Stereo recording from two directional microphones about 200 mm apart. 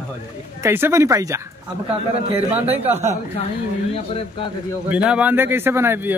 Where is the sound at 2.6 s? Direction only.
30° right (ahead or behind).